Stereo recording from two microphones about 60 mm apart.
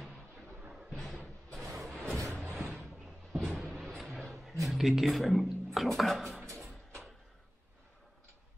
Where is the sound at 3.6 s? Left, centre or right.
Centre.